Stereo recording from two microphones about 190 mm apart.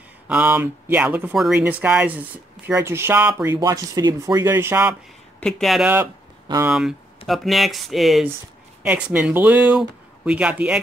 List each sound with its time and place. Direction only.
0.3 s speech: 10° right (ahead or behind)
5.4 s speech: centre (ahead or behind)